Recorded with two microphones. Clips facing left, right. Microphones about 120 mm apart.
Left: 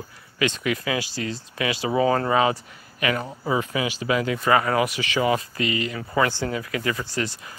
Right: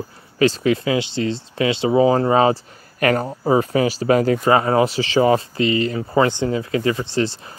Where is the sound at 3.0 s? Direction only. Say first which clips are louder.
Right 7 dB; 45° right (ahead or behind).